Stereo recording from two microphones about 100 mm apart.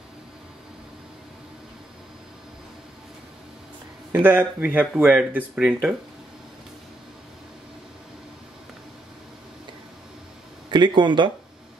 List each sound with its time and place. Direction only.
4.1 s speech: 20° right (ahead or behind)
10.7 s speech: 50° right (ahead or behind)